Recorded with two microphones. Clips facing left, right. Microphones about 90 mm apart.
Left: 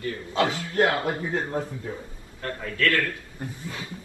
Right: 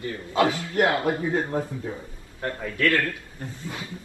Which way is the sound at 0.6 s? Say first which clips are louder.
Even; 25° right (ahead or behind).